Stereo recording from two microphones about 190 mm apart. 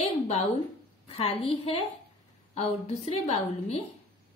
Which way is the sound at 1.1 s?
30° left (ahead or behind).